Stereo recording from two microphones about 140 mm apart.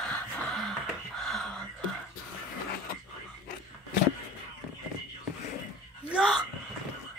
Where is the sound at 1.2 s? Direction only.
Centre (ahead or behind).